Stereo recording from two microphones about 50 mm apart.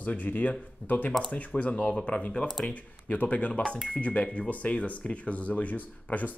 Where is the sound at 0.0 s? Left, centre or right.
Left.